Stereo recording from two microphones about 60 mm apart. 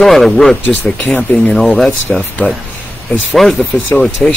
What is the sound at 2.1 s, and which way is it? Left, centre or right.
Speech, centre.